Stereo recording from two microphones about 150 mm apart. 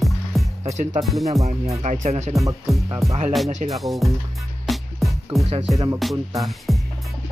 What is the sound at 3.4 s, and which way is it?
Speech, 45° right (ahead or behind).